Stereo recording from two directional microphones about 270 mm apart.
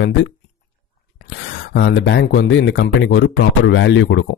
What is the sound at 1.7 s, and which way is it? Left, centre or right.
Speech, left.